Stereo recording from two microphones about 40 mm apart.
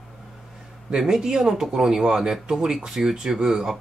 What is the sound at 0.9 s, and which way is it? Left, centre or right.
Speech, centre.